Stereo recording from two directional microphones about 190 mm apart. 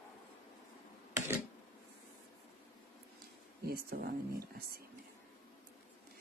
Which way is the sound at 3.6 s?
55° right (ahead or behind).